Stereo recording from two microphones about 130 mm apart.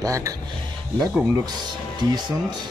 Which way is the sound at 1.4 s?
35° right (ahead or behind).